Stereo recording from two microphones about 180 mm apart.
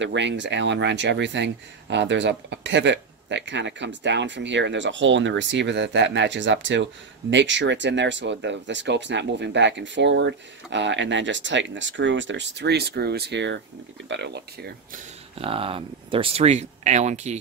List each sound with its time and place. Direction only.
0.0 s speech: 80° right
15.3 s speech: 30° right (ahead or behind)